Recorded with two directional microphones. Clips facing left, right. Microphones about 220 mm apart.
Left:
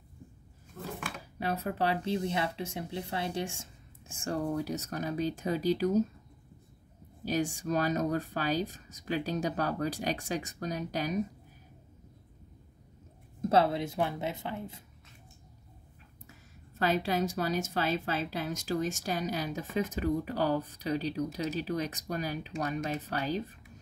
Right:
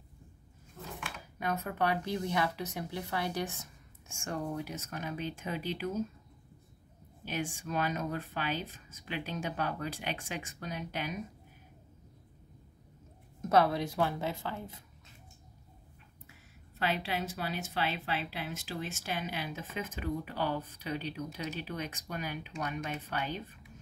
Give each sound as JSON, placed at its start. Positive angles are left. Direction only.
{"t": 1.4, "sound": "speech", "side_deg": 30}
{"t": 7.2, "sound": "speech", "side_deg": 40}
{"t": 13.4, "sound": "speech", "side_deg": 25}
{"t": 16.3, "sound": "speech", "side_deg": 40}